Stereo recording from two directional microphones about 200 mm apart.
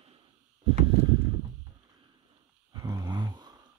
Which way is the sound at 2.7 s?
20° right (ahead or behind).